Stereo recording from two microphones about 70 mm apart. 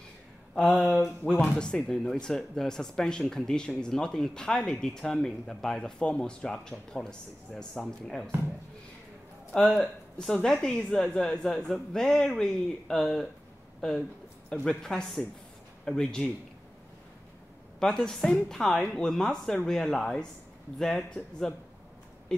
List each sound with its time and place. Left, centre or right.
0.6 s speech: centre
9.5 s speech: centre
17.7 s speech: centre